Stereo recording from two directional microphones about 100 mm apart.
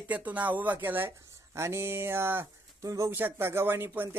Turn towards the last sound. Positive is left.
turn(degrees=-20)  # may be behind; listen again after turning